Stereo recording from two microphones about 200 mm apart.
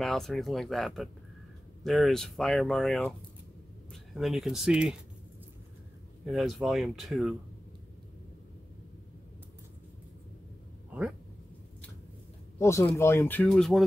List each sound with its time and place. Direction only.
0.0 s speech: centre (ahead or behind)
6.2 s speech: centre (ahead or behind)
12.5 s speech: 15° left (ahead or behind)